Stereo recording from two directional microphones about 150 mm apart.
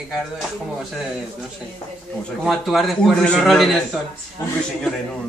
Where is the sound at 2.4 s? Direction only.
Centre (ahead or behind).